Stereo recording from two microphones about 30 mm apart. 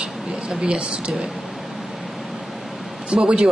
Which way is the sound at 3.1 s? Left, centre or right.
Right.